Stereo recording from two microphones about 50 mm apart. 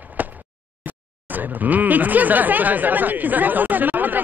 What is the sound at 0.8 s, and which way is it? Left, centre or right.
Speech, right.